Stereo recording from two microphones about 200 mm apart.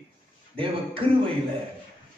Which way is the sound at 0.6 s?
25° right (ahead or behind).